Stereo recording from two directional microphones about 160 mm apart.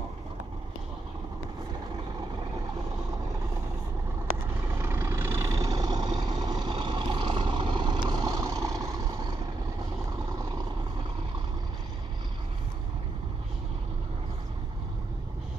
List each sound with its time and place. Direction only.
4.7 s vehicle: 15° right (ahead or behind)